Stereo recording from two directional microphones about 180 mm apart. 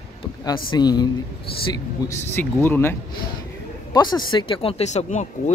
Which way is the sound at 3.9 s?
25° left (ahead or behind).